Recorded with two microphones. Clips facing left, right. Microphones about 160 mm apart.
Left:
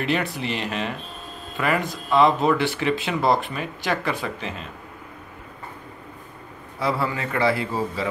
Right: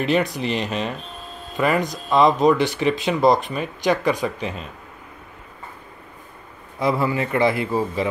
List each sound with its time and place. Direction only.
0.0 s speech: 20° right (ahead or behind)
6.8 s speech: 15° right (ahead or behind)